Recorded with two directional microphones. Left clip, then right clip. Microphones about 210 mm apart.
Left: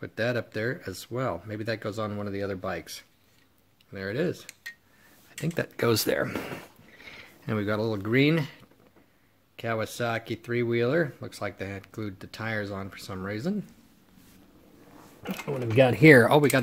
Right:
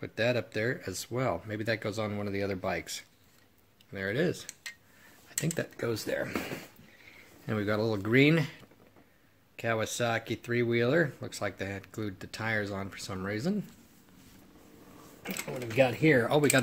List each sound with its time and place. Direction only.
0.0 s speech: 10° left (ahead or behind)
5.8 s speech: 45° left (ahead or behind)
7.4 s speech: 15° left (ahead or behind)
9.6 s speech: 10° left (ahead or behind)
15.2 s speech: 30° left (ahead or behind)
16.3 s speech: 20° left (ahead or behind)